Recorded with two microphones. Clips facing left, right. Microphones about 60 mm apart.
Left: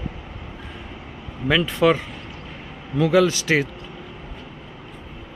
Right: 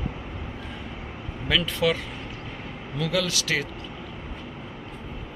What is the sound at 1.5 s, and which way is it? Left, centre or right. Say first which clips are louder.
Speech: left 6 dB; left.